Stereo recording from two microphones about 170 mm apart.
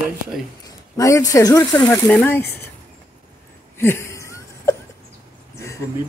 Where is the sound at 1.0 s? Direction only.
20° left (ahead or behind).